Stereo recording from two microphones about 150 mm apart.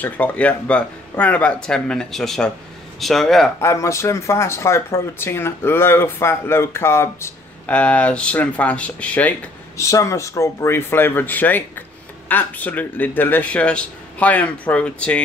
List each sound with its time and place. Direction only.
0.0 s speech: 10° left (ahead or behind)
3.6 s speech: 20° left (ahead or behind)
9.8 s speech: 20° left (ahead or behind)